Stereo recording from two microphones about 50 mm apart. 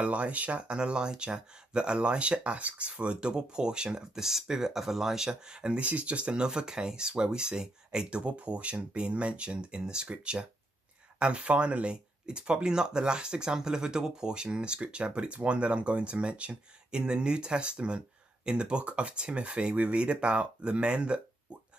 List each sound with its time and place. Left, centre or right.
0.0 s speech: right